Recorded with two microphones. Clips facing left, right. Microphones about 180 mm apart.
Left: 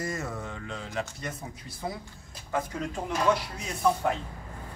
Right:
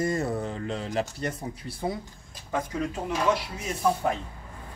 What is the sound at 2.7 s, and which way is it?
Speech, 5° right (ahead or behind).